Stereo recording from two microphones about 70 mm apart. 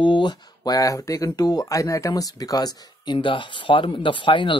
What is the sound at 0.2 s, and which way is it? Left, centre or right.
Speech, left.